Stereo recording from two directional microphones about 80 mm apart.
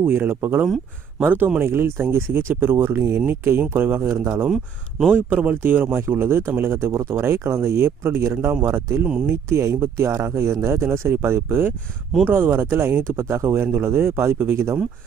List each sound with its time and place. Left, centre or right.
0.0 s speech: right
4.5 s speech: centre
5.3 s speech: right